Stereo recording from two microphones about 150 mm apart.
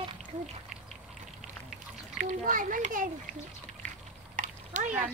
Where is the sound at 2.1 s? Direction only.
60° right (ahead or behind).